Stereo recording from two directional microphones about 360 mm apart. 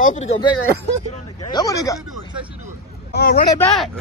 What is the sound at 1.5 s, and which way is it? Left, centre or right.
Speech, centre.